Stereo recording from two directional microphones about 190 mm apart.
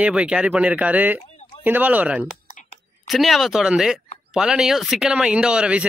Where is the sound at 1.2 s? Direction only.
35° left (ahead or behind).